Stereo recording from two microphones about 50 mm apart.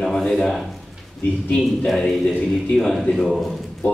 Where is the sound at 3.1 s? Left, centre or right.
Centre.